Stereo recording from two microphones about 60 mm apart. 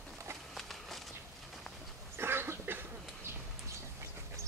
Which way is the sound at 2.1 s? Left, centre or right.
Right.